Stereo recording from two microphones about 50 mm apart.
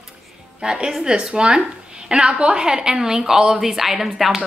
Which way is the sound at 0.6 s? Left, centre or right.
Centre.